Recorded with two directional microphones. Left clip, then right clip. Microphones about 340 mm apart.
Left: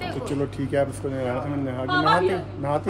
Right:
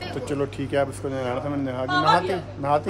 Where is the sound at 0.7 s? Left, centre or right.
Centre.